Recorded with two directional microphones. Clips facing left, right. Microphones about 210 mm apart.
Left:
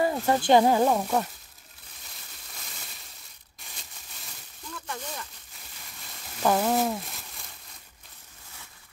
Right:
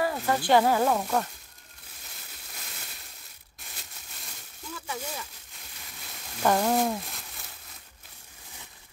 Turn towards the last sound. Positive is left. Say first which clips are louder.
# even
turn(degrees=0)  # may be behind; listen again after turning